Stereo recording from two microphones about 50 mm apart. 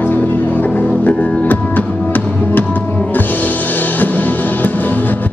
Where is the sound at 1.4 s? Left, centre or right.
Left.